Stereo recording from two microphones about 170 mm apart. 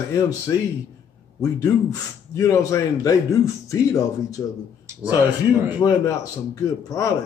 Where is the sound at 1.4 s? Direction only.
20° left (ahead or behind).